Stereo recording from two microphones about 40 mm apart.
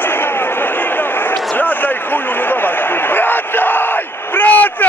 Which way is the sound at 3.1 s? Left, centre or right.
Left.